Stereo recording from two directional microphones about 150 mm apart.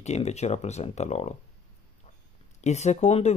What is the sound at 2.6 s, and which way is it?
Speech, 50° left (ahead or behind).